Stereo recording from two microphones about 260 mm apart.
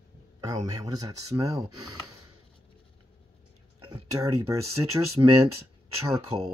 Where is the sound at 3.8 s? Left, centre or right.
Centre.